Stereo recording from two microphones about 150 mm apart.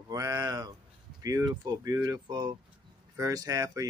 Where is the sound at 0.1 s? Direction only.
20° right (ahead or behind).